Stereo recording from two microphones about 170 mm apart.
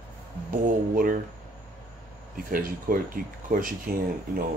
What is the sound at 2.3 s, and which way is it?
Speech, 55° right (ahead or behind).